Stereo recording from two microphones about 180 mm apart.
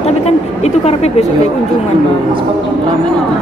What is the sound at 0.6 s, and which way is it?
Speech, 35° left (ahead or behind).